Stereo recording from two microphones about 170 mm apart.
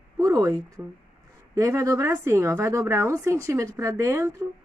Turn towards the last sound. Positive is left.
turn(degrees=-15)  # may be behind; listen again after turning